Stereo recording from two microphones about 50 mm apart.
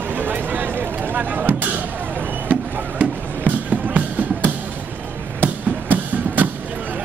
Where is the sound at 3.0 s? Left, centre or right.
Right.